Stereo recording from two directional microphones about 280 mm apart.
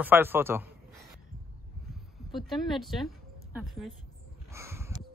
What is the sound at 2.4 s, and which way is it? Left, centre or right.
Speech, centre.